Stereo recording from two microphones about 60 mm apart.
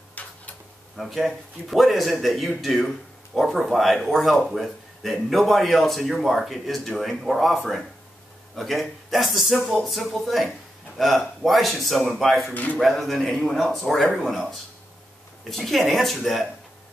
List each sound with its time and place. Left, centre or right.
0.2 s tick-tock: left
0.9 s speech: centre
15.5 s speech: centre